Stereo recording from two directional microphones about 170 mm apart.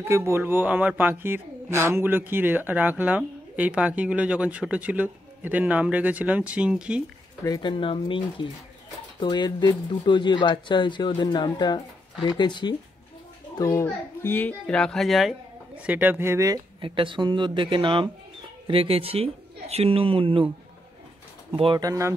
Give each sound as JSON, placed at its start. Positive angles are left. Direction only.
{"t": 0.1, "sound": "speech", "side_deg": -15}
{"t": 7.4, "sound": "a child's voice", "side_deg": 25}
{"t": 15.8, "sound": "speech", "side_deg": -10}
{"t": 21.5, "sound": "speech", "side_deg": -30}